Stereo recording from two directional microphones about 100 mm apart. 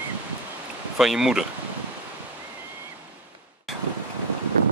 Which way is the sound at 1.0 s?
5° right (ahead or behind).